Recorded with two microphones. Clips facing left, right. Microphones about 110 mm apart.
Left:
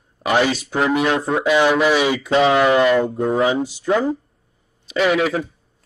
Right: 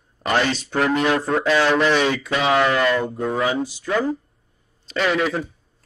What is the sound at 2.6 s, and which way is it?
Speech, 20° left (ahead or behind).